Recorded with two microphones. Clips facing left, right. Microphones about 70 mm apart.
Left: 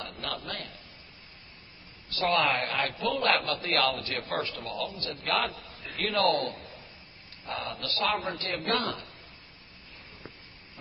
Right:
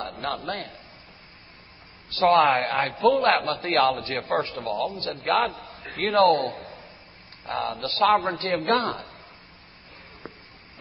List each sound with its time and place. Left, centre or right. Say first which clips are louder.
0.0 s a sound: right 7 dB; right
0.3 s a man's voice: right 6 dB; right
2.0 s a man's voice: right 8 dB; right